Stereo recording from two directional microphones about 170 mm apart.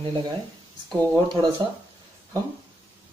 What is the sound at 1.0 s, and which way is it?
Speech, 25° right (ahead or behind).